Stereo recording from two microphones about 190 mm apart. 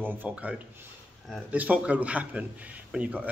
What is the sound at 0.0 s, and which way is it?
Speech, 10° right (ahead or behind).